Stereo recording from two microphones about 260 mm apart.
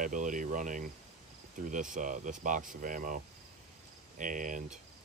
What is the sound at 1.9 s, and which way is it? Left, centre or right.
Speech, right.